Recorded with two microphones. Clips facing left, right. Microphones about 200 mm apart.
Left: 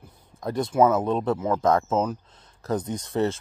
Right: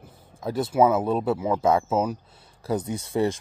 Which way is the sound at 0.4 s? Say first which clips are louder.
Even; 5° right (ahead or behind).